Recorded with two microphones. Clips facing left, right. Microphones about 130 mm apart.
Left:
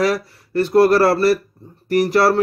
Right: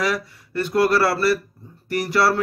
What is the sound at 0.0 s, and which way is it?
A man's voice, 35° left (ahead or behind).